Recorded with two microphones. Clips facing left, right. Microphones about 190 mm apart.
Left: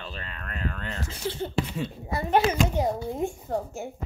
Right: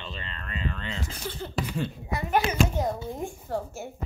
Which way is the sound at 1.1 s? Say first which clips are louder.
Left 8 dB; 25° left (ahead or behind).